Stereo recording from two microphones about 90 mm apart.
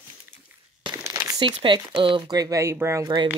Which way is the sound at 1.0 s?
35° right (ahead or behind).